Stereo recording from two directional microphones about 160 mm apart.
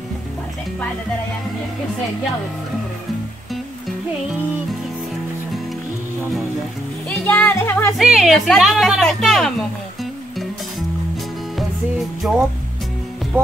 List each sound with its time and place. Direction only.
7.1 s speech: 10° left (ahead or behind)
8.0 s speech: centre (ahead or behind)
12.2 s speech: 5° right (ahead or behind)